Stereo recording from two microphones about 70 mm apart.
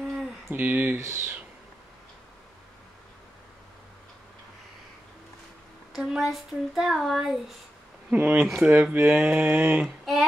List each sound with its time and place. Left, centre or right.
0.5 s speech: right
0.9 s speech: right
5.9 s speech: centre
8.1 s speech: right
9.8 s a sound: centre